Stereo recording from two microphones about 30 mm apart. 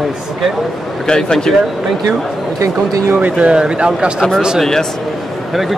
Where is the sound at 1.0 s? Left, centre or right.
Left.